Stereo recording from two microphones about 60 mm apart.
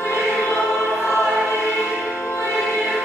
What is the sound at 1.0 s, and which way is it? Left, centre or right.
Choir, centre.